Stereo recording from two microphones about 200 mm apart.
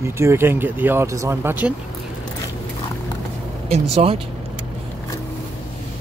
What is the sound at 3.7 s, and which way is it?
Speech, 30° right (ahead or behind).